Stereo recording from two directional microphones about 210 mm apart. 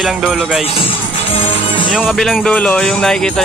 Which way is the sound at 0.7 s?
25° left (ahead or behind).